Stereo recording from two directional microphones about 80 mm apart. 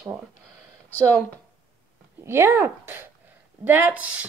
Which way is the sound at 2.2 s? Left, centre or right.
Right.